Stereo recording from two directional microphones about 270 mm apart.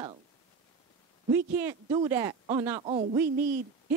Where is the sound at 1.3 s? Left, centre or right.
Centre.